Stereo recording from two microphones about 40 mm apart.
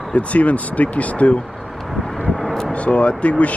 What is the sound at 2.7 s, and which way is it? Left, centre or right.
Speech, left.